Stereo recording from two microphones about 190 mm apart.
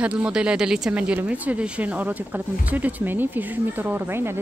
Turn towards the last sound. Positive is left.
turn(degrees=-10)  # may be behind; listen again after turning